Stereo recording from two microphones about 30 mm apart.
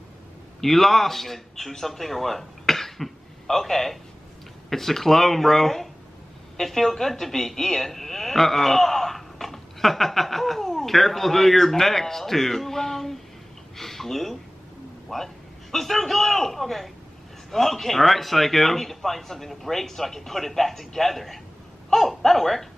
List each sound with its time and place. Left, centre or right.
0.6 s a woman's voice: centre